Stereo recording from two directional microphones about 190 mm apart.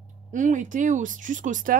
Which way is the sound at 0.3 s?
40° right (ahead or behind).